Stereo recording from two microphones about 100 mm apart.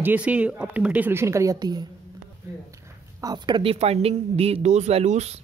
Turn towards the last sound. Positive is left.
turn(degrees=-90)